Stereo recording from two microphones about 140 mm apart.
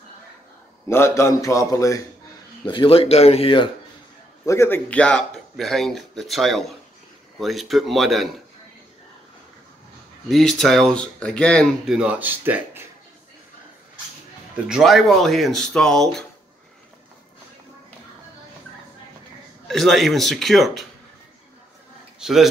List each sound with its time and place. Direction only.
0.8 s a man's voice: 20° left (ahead or behind)
2.6 s speech: 35° left (ahead or behind)
4.5 s speech: 15° left (ahead or behind); by 8.3 s centre (ahead or behind)
10.2 s speech: centre (ahead or behind); by 12.8 s 15° right (ahead or behind)
14.7 s speech: centre (ahead or behind)
19.7 s speech: centre (ahead or behind)
22.2 s speech: centre (ahead or behind)